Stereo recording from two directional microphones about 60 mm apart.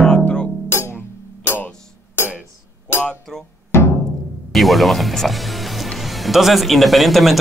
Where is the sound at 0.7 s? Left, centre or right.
Left.